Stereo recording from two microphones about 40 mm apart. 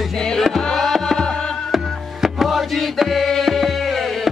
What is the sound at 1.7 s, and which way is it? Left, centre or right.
Music, centre.